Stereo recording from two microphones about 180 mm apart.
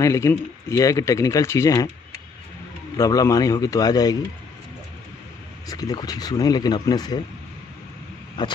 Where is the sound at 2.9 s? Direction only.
15° left (ahead or behind).